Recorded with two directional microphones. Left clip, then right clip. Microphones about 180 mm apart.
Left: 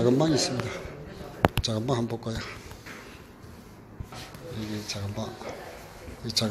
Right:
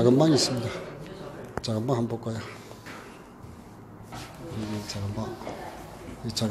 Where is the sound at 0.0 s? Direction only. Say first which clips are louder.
Right 3 dB; 15° right (ahead or behind).